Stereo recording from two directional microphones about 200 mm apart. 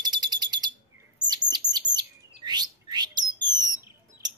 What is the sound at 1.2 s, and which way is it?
Chirp, 20° right (ahead or behind).